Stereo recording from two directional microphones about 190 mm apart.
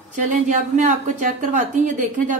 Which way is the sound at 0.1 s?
40° right (ahead or behind).